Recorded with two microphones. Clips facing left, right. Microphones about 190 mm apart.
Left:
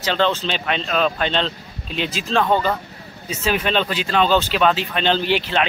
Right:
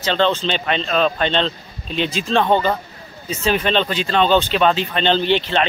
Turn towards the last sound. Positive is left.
turn(degrees=5)  # may be behind; listen again after turning